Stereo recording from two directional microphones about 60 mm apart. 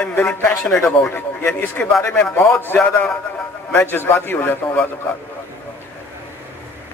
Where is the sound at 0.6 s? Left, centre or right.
Centre.